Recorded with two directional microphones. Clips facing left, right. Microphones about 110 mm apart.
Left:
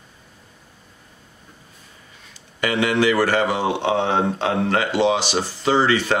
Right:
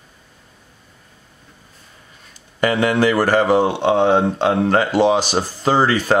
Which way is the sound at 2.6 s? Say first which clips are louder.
Right 3 dB; 40° right (ahead or behind).